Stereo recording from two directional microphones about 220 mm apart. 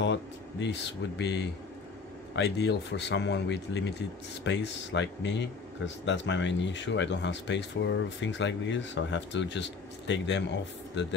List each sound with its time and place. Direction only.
0.0 s speech: 55° left (ahead or behind)